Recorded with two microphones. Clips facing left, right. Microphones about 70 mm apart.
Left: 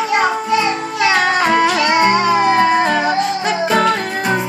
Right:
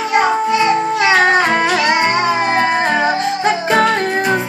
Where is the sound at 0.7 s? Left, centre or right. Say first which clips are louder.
Right 3 dB; right.